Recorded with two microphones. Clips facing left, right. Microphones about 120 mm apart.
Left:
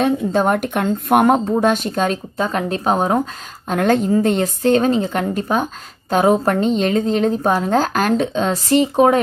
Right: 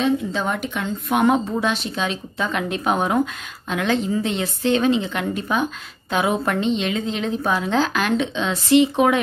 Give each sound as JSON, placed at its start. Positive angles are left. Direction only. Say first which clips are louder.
{"t": 0.0, "sound": "a woman's voice", "louder": "left 5 dB", "side_deg": 50}